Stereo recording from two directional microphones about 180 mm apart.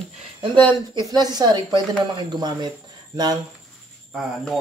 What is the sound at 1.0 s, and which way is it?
A woman's voice, 20° right (ahead or behind).